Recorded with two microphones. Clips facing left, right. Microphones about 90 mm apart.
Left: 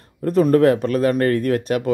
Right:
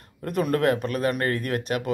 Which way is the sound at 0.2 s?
30° left (ahead or behind).